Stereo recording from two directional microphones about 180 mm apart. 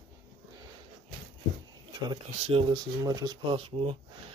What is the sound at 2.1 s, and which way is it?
Speech, 30° right (ahead or behind).